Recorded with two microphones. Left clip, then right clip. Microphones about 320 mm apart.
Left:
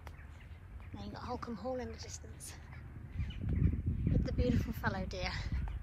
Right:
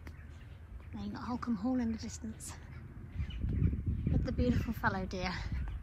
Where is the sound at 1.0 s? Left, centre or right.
Centre.